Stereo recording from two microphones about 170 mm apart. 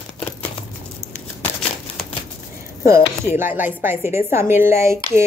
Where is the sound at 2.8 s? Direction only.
15° right (ahead or behind).